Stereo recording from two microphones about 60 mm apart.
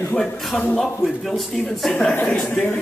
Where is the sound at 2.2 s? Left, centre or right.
Centre.